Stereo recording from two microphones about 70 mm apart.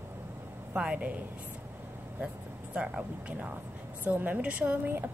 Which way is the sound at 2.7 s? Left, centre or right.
Centre.